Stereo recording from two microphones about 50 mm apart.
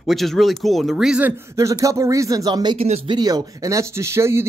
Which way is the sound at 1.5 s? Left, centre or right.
Right.